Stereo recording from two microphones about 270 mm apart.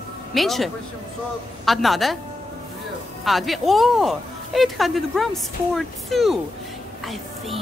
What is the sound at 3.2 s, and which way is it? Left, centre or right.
A woman's voice, centre.